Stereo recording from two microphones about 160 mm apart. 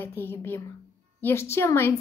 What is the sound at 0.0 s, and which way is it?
A woman's voice, 15° left (ahead or behind).